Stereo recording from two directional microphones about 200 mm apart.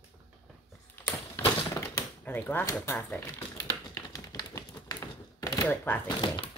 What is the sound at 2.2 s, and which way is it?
Speech, 10° left (ahead or behind).